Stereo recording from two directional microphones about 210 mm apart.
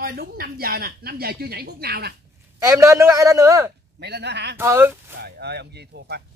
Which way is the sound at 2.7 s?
15° right (ahead or behind).